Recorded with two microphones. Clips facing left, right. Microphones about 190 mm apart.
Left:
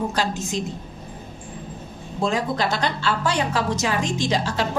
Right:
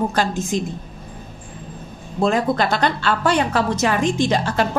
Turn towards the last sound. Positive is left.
turn(degrees=-55)  # may be behind; listen again after turning